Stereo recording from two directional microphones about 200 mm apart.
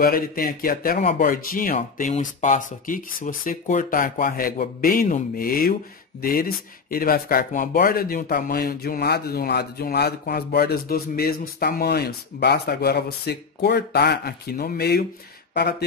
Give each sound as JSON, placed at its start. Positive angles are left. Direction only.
{"t": 0.0, "sound": "speech", "side_deg": 45}